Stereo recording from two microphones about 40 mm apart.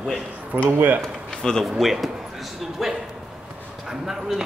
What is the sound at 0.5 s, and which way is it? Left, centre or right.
Speech, right.